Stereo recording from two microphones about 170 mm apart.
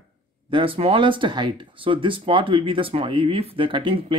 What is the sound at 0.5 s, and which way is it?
Speech, 30° right (ahead or behind).